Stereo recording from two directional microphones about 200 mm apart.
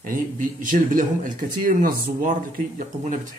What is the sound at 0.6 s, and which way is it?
Speech, 40° right (ahead or behind).